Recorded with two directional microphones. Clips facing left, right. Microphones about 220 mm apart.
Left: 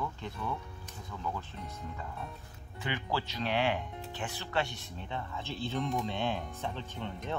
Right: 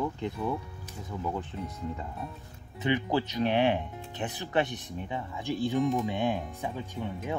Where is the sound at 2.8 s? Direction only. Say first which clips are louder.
Right 8 dB; 20° right (ahead or behind).